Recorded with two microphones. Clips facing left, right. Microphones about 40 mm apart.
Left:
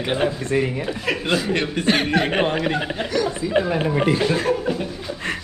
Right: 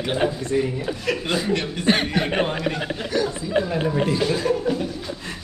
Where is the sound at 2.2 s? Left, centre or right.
Left.